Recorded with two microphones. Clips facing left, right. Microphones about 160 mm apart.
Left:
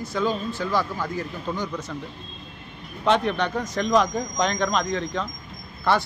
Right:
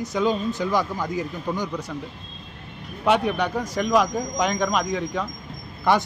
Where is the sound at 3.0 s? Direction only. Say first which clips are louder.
Right 1 dB; 10° right (ahead or behind).